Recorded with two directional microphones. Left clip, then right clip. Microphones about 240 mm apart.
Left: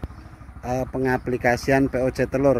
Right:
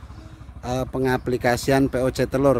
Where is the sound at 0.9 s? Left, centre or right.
Centre.